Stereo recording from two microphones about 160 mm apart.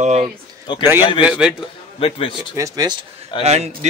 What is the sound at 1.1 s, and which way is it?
Speech, 5° right (ahead or behind).